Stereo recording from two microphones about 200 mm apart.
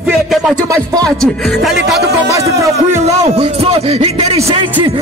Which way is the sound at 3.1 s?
30° right (ahead or behind).